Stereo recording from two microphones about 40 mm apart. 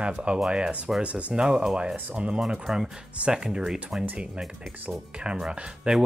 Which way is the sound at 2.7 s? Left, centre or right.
Centre.